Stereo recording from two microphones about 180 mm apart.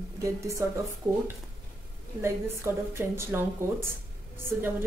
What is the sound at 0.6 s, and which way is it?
Speech, 15° right (ahead or behind).